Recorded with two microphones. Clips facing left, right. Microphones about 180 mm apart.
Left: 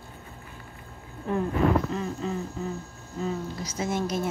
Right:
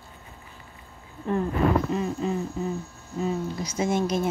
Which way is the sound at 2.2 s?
15° right (ahead or behind).